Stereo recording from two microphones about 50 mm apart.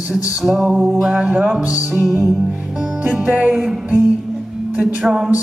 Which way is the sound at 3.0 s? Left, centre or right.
Right.